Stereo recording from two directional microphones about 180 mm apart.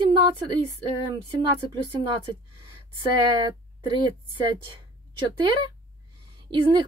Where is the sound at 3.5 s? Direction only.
25° right (ahead or behind).